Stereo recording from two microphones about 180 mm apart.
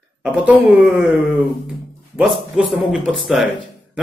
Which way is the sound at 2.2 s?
5° right (ahead or behind).